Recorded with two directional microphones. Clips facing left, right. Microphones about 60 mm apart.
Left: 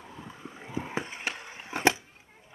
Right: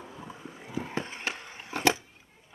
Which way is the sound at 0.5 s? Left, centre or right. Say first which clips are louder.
Left 1 dB; left.